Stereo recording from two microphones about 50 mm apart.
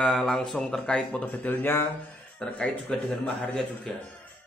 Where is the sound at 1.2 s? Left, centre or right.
Left.